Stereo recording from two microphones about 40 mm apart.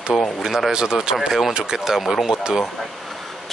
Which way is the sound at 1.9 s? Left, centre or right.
Centre.